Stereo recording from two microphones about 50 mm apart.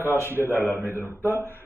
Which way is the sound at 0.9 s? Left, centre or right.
Left.